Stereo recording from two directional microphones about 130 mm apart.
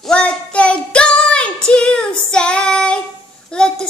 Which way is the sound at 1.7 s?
10° left (ahead or behind).